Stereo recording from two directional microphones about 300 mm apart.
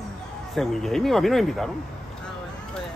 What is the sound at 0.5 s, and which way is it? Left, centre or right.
Speech, centre.